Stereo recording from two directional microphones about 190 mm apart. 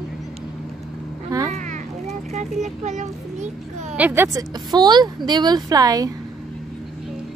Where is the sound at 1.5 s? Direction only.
40° right (ahead or behind).